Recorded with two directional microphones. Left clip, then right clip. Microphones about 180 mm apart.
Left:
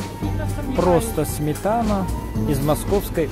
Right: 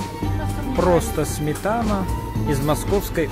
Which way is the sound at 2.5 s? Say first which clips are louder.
Left 1 dB; 10° left (ahead or behind).